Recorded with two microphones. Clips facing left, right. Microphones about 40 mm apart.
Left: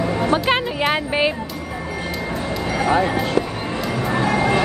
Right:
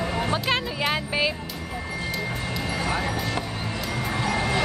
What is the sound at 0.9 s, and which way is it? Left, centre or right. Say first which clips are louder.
Speech: left 5 dB; left.